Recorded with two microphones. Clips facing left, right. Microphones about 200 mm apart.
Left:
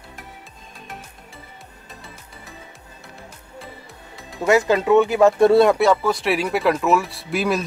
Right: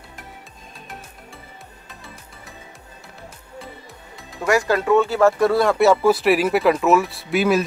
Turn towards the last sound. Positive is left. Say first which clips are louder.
# right 3 dB
turn(degrees=0)  # may be behind; listen again after turning